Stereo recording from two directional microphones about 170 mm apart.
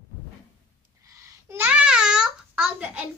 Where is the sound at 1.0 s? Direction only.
20° right (ahead or behind).